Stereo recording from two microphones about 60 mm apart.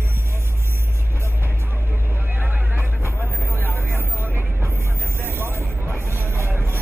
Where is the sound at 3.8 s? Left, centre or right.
Right.